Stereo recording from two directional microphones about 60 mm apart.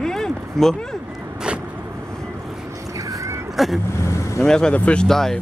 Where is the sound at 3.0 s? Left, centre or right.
Right.